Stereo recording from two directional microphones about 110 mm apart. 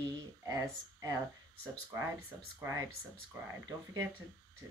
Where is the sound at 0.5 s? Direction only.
30° right (ahead or behind).